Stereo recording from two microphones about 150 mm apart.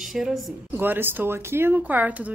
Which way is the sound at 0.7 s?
15° right (ahead or behind).